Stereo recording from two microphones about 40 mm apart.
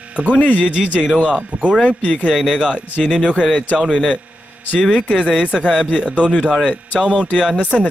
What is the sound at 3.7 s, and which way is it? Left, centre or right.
Speech, centre.